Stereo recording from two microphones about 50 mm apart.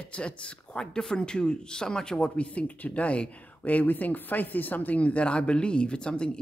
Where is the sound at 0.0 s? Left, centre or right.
Left.